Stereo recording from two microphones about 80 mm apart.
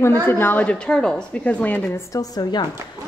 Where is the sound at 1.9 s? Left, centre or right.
Left.